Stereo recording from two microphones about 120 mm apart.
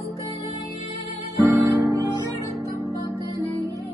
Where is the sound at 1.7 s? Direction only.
25° right (ahead or behind).